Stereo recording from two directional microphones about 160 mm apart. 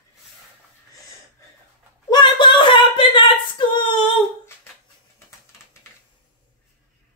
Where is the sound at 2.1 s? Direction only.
30° left (ahead or behind).